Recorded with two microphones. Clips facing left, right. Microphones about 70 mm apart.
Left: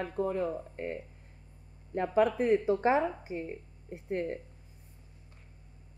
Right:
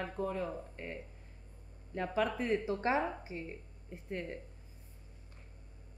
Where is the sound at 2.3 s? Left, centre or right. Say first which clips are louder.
Left 7 dB; centre.